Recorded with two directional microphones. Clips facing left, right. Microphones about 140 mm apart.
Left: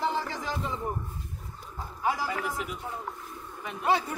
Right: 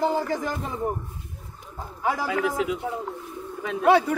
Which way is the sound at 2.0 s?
65° right (ahead or behind).